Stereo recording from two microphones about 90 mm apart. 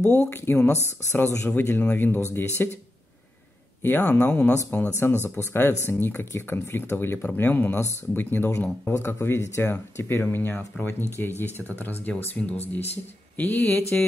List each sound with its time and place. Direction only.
0.0 s speech: 20° left (ahead or behind)
3.8 s speech: 25° left (ahead or behind)